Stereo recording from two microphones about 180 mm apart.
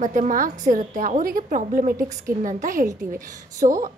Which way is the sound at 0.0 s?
45° right (ahead or behind).